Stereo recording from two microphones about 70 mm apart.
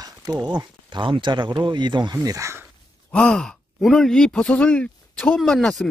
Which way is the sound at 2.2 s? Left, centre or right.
Right.